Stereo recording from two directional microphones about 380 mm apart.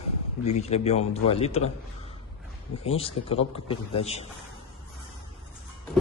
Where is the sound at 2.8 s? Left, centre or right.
Centre.